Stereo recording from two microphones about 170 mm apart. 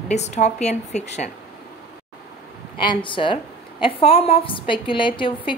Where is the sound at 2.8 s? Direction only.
30° left (ahead or behind).